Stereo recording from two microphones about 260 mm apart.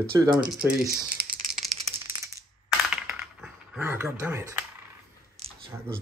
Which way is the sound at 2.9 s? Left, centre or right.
Centre.